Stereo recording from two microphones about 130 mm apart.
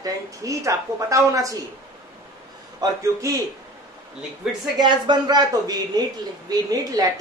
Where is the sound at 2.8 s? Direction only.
25° right (ahead or behind).